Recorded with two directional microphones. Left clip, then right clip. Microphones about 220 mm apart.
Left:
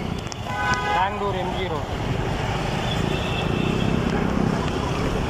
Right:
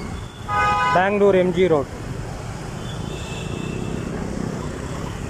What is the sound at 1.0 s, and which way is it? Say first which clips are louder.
Speech: right 8 dB; 70° right (ahead or behind).